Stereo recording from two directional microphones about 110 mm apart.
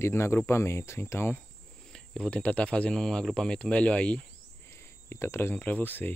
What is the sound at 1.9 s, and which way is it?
Speech, 10° left (ahead or behind).